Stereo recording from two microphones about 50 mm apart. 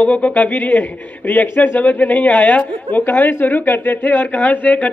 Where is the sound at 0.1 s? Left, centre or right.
Left.